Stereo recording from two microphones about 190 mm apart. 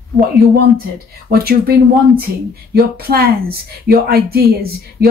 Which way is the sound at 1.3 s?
55° right (ahead or behind).